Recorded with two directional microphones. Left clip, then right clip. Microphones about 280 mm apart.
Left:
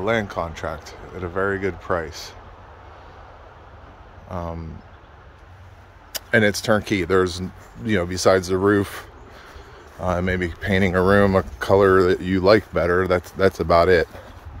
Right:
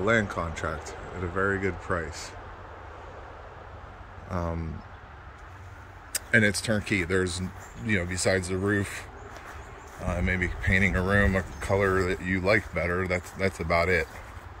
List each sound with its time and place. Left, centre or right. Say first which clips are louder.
0.0 s speech: left 3 dB; centre
4.3 s speech: left 2 dB; centre
6.1 s speech: left 5 dB; centre
10.0 s speech: left 6 dB; centre